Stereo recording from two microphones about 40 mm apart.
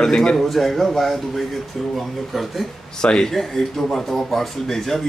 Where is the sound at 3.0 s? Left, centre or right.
Centre.